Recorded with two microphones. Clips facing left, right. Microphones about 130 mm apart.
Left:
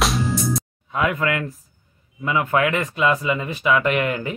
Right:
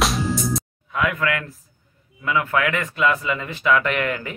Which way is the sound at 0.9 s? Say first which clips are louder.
Left 1 dB; 25° left (ahead or behind).